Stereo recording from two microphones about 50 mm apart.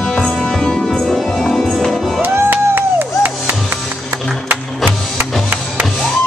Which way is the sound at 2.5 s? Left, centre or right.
Right.